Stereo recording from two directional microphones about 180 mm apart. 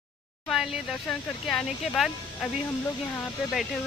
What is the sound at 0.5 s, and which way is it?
Speech, 5° right (ahead or behind).